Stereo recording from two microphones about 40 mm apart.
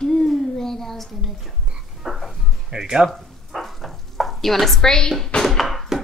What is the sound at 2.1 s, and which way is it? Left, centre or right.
Music, centre.